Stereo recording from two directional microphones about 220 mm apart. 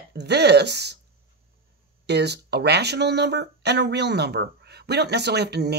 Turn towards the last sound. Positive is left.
turn(degrees=-50)  # may be behind; listen again after turning